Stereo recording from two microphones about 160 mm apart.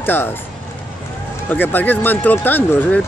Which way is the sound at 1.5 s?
10° left (ahead or behind).